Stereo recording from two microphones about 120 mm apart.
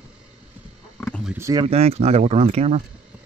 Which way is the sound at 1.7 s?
60° right (ahead or behind).